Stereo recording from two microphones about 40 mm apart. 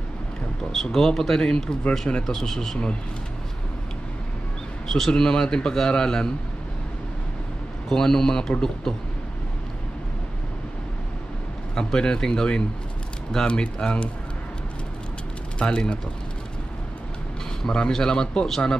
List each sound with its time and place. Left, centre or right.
0.7 s a man's voice: centre
1.9 s a man's voice: left
2.2 s a man's voice: centre
5.1 s a man's voice: centre
7.9 s a man's voice: centre
11.7 s a man's voice: centre
15.6 s a man's voice: left
17.6 s a man's voice: centre